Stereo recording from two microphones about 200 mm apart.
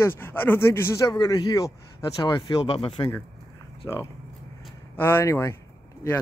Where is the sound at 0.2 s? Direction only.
10° left (ahead or behind).